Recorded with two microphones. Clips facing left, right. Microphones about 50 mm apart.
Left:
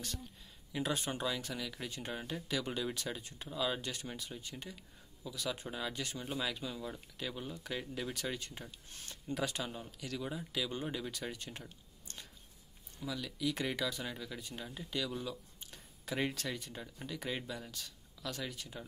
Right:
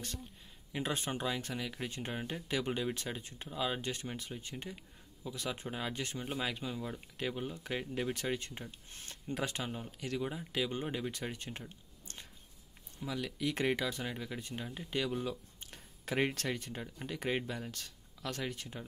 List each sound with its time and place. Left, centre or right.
0.7 s speech: right
13.0 s speech: right